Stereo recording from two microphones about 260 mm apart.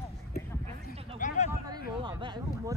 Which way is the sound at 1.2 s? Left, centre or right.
Left.